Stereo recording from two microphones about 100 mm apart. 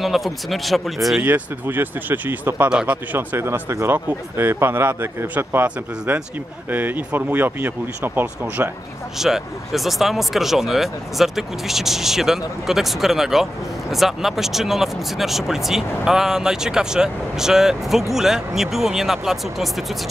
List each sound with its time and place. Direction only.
0.0 s speech: centre (ahead or behind)
1.2 s speech: 20° right (ahead or behind)
9.2 s speech: 5° right (ahead or behind)